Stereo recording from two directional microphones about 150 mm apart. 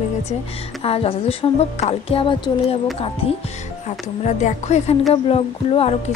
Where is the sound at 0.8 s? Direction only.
40° left (ahead or behind).